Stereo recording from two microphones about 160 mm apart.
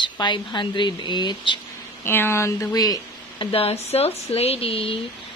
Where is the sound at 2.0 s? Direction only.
15° left (ahead or behind).